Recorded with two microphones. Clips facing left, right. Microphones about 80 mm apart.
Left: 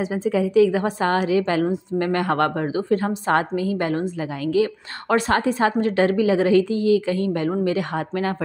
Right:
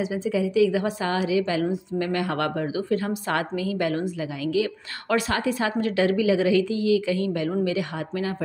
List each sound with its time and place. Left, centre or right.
0.0 s a woman's voice: left